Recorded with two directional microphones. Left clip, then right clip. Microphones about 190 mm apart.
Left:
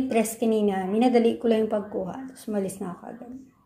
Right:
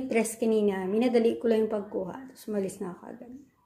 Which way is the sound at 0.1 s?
10° right (ahead or behind).